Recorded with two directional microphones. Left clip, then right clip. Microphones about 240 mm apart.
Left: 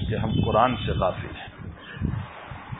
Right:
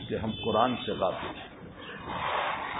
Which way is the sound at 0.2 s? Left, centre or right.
Left.